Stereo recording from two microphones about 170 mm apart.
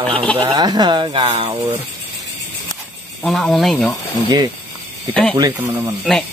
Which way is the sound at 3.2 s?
Centre (ahead or behind).